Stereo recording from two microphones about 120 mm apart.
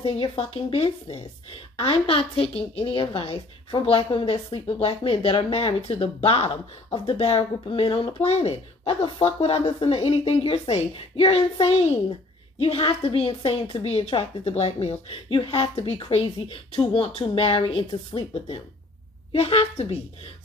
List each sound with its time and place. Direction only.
0.0 s a woman's voice: 50° left (ahead or behind)